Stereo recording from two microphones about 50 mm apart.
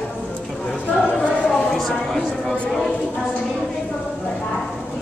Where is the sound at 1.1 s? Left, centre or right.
Centre.